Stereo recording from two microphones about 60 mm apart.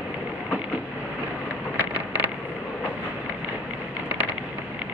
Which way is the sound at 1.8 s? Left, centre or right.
Right.